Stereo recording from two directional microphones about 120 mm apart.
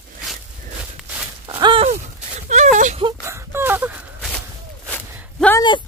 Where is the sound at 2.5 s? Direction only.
90° right.